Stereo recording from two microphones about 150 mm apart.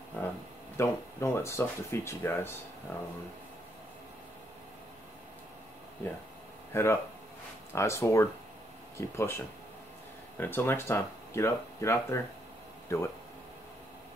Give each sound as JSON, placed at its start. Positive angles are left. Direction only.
{"t": 0.1, "sound": "a sound", "side_deg": 10}
{"t": 0.7, "sound": "speech", "side_deg": 15}
{"t": 6.7, "sound": "speech", "side_deg": 15}